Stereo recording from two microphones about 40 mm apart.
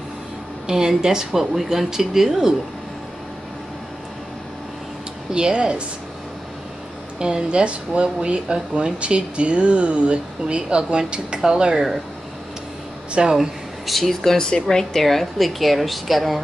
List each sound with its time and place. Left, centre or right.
0.7 s speech: centre
5.3 s speech: right
7.2 s speech: right
13.1 s speech: centre
13.4 s speech: centre
14.3 s a woman's voice: centre